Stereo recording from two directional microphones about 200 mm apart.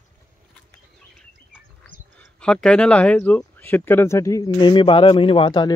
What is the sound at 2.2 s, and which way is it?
Speech, 5° left (ahead or behind).